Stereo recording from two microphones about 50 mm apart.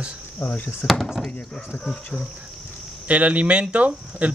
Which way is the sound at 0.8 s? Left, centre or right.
Centre.